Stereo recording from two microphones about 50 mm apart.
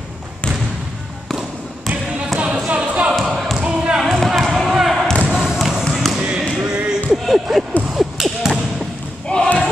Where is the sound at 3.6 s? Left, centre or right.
Right.